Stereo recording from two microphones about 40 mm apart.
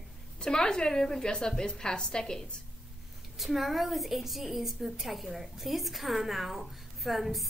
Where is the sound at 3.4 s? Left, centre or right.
Centre.